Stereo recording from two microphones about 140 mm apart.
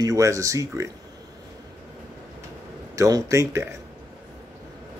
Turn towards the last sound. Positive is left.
turn(degrees=-20)  # may be behind; listen again after turning